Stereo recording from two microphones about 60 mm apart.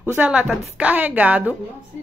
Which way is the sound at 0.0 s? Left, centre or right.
Right.